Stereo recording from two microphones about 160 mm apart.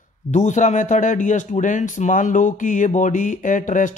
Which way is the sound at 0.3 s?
50° left (ahead or behind).